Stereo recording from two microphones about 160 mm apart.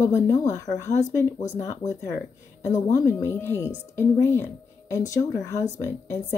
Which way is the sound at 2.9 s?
15° left (ahead or behind).